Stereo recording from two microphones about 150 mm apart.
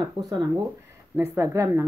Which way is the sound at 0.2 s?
25° right (ahead or behind).